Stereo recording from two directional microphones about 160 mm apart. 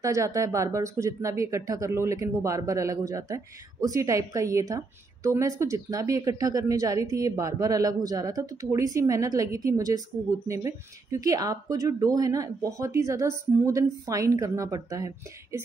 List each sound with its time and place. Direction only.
0.0 s speech: 20° right (ahead or behind)